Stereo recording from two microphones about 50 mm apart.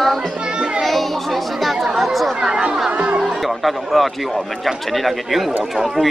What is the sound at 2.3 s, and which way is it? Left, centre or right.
Chatter, centre.